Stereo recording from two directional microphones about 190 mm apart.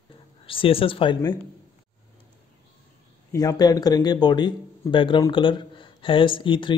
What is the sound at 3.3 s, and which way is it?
Speech, 20° left (ahead or behind).